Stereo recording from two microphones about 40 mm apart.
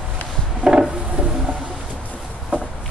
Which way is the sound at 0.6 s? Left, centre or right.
Right.